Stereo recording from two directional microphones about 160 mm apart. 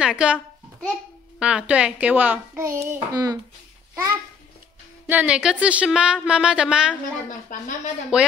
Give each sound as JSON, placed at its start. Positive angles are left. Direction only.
{"t": 0.0, "sound": "speech", "side_deg": -5}
{"t": 1.4, "sound": "speech", "side_deg": -5}
{"t": 2.8, "sound": "child singing", "side_deg": -20}
{"t": 5.0, "sound": "speech", "side_deg": -10}
{"t": 7.2, "sound": "speech", "side_deg": 50}
{"t": 8.1, "sound": "speech", "side_deg": -5}